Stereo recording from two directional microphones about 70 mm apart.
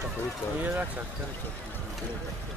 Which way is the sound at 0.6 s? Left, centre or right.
Right.